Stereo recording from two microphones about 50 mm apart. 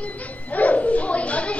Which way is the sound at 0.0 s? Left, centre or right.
Left.